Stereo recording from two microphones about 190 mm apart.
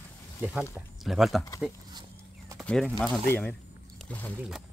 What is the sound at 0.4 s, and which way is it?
Speech, 5° right (ahead or behind).